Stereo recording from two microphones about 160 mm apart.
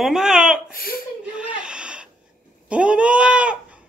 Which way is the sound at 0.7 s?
65° left (ahead or behind).